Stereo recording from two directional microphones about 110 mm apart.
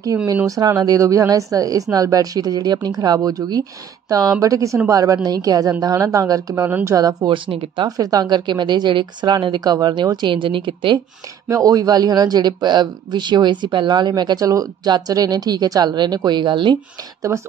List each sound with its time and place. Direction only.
0.1 s a man's voice: 25° right (ahead or behind)
7.3 s a woman's voice: 55° right (ahead or behind)
8.0 s a woman's voice: 35° right (ahead or behind)
11.4 s a man's voice: 35° right (ahead or behind)
17.3 s speech: 25° right (ahead or behind)